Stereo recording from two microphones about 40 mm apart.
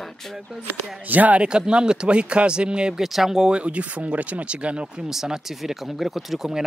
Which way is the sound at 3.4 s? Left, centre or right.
Right.